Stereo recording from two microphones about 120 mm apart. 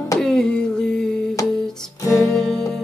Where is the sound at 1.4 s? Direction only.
25° left (ahead or behind).